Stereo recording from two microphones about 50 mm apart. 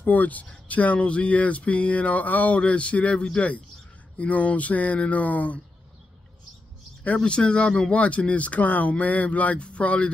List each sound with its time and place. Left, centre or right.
0.0 s speech: left
7.0 s speech: left